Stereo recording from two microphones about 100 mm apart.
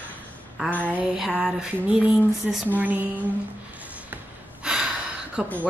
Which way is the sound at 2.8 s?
20° right (ahead or behind).